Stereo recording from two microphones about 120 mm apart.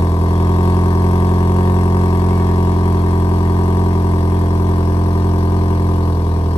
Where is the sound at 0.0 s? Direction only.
55° left (ahead or behind).